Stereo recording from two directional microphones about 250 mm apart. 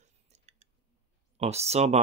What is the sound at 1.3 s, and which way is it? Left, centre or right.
Speech, right.